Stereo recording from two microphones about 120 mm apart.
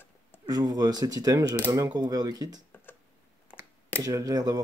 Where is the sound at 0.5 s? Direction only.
35° right (ahead or behind).